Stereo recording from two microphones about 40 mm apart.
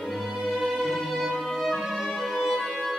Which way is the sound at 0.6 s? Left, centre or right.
Centre.